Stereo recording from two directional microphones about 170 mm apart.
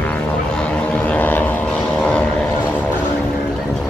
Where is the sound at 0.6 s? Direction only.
10° left (ahead or behind).